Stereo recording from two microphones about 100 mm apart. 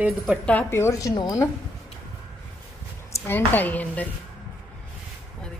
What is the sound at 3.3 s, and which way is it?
Speech, 20° left (ahead or behind).